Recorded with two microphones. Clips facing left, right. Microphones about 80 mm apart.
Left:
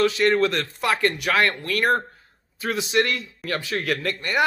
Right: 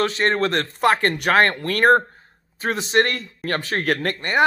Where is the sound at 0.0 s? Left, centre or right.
Right.